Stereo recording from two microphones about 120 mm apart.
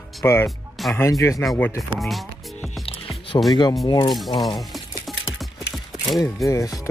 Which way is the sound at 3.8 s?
40° left (ahead or behind).